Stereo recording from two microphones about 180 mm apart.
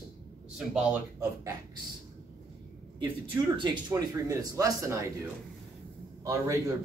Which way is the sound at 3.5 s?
25° right (ahead or behind).